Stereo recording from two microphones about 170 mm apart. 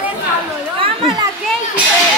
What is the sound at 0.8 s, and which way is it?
Chatter, 30° right (ahead or behind).